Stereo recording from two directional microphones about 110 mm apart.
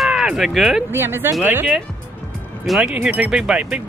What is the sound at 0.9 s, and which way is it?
Speech, 20° right (ahead or behind).